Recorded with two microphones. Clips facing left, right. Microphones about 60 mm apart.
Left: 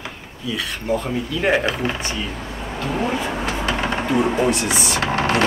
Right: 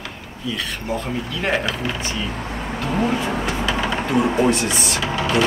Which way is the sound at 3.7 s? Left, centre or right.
Left.